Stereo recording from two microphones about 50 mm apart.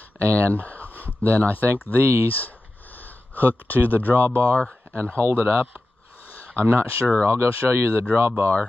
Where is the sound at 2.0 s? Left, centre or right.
Right.